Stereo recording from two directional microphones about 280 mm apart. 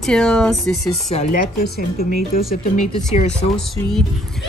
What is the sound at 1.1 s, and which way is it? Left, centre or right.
Speech, left.